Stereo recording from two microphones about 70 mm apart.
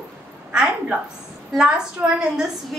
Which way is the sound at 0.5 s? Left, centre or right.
Centre.